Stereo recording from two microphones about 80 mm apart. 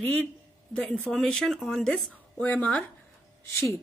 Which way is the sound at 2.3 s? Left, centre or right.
Centre.